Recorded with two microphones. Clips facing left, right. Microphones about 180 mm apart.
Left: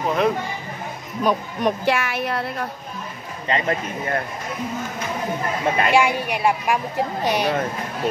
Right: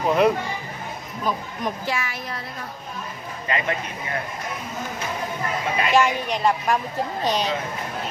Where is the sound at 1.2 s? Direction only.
70° left (ahead or behind).